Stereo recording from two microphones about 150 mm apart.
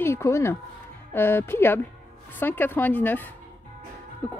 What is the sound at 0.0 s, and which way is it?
Speech, 15° left (ahead or behind).